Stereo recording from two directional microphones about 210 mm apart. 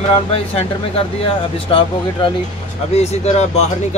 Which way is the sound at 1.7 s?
25° left (ahead or behind).